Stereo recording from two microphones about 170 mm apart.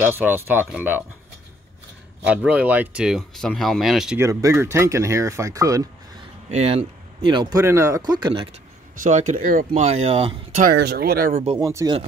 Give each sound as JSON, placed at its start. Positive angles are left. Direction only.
{"t": 0.0, "sound": "speech", "side_deg": -10}
{"t": 2.2, "sound": "speech", "side_deg": -5}
{"t": 4.2, "sound": "speech", "side_deg": -20}
{"t": 6.5, "sound": "speech", "side_deg": -40}
{"t": 7.2, "sound": "speech", "side_deg": -25}
{"t": 7.6, "sound": "speech", "side_deg": -15}
{"t": 9.0, "sound": "speech", "side_deg": -50}
{"t": 9.8, "sound": "speech", "side_deg": -35}
{"t": 10.6, "sound": "speech", "side_deg": -70}
{"t": 11.5, "sound": "speech", "side_deg": -20}